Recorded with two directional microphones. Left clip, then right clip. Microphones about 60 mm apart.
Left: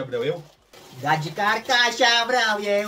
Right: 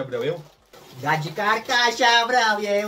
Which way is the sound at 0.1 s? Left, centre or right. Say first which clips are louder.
Even; right.